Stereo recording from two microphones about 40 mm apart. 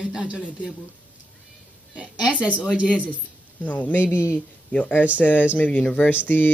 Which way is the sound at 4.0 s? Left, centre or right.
Right.